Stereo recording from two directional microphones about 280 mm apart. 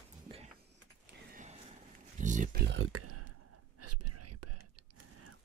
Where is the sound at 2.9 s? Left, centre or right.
Right.